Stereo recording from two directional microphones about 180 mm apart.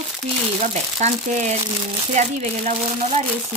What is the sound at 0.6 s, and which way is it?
Speech, 40° right (ahead or behind).